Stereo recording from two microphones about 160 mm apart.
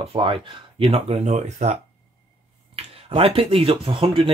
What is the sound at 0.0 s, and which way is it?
Speech, 35° right (ahead or behind).